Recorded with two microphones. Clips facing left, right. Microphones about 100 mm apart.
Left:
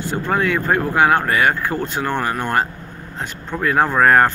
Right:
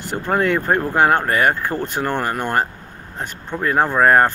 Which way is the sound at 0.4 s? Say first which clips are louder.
Right 2 dB; 40° right (ahead or behind).